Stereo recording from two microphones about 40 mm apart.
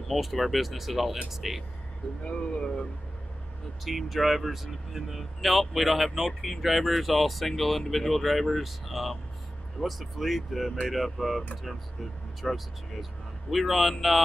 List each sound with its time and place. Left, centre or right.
0.1 s speech: centre
2.2 s speech: left
3.8 s speech: centre